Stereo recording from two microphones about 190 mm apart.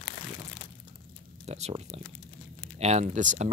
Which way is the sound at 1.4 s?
35° right (ahead or behind).